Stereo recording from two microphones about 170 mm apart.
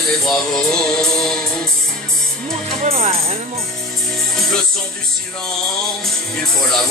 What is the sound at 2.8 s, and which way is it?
Speech, 40° right (ahead or behind).